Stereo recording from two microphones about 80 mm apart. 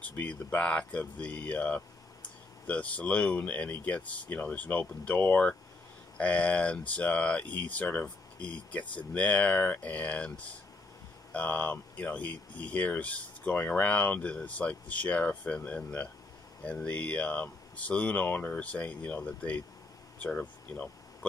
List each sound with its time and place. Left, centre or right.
0.1 s speech: left
20.2 s air conditioning: centre